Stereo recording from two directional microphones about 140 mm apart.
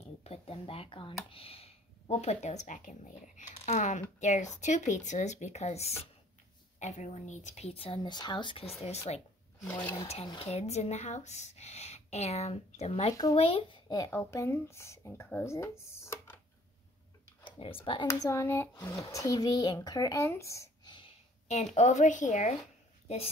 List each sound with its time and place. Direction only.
0.2 s speech: 45° left (ahead or behind)
9.7 s speech: 10° left (ahead or behind)
10.4 s a child's voice: 50° left (ahead or behind); by 16.3 s 20° left (ahead or behind)
17.4 s a sound: 40° left (ahead or behind)
18.0 s speech: 20° left (ahead or behind)
21.5 s speech: 55° left (ahead or behind)